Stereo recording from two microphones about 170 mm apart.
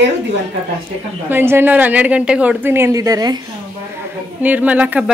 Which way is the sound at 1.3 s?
15° right (ahead or behind).